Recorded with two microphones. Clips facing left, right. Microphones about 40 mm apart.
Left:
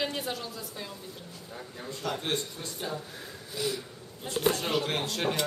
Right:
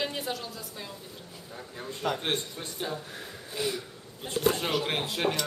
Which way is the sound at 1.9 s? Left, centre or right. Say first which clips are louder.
Right 2 dB; right.